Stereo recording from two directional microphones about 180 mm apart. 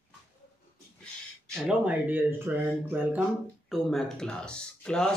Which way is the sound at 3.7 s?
Centre (ahead or behind).